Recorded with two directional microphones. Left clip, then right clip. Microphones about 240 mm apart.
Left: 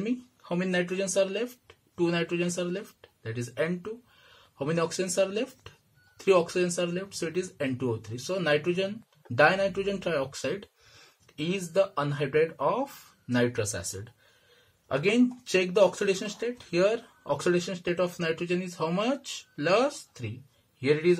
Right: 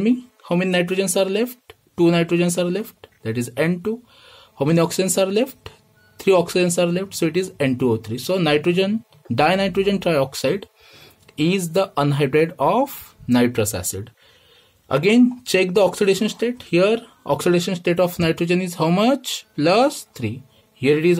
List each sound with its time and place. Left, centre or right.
0.0 s speech: right
14.9 s speech: right